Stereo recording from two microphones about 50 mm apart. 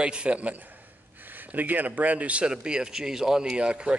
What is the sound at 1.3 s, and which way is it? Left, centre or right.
Speech, right.